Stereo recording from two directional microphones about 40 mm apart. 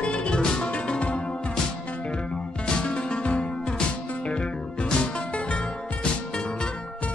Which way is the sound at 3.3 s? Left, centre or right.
Left.